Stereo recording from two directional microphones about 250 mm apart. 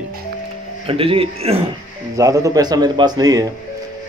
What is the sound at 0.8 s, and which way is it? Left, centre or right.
A man's voice, right.